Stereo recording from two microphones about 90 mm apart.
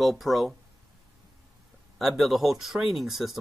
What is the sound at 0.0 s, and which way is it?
Speech, centre (ahead or behind).